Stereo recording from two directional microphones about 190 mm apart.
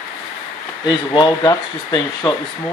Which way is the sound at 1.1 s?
20° left (ahead or behind).